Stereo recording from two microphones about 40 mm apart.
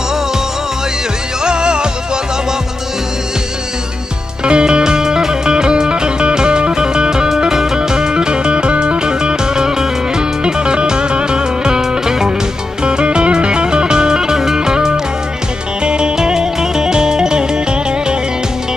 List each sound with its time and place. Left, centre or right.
1.4 s music: right
4.5 s music: right